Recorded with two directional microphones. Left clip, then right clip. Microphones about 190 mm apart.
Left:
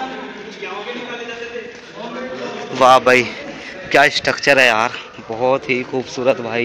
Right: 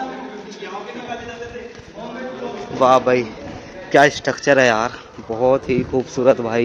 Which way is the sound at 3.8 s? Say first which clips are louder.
Left 1 dB; 10° right (ahead or behind).